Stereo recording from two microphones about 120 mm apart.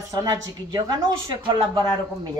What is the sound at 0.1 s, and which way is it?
Speech, 30° right (ahead or behind).